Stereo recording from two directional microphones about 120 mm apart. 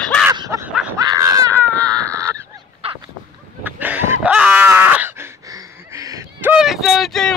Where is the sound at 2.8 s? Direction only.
50° right (ahead or behind).